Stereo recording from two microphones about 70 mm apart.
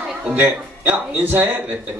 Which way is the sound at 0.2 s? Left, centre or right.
Right.